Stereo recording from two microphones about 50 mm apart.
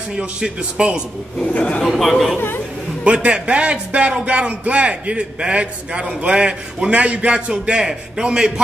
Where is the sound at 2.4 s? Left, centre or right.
Left.